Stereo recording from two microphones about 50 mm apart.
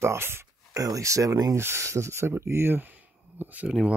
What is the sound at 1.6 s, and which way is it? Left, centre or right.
Speech, right.